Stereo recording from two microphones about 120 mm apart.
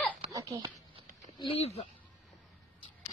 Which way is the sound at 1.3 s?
50° left (ahead or behind).